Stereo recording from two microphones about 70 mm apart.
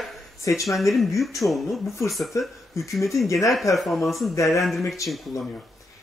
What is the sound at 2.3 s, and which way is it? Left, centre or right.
Speech, left.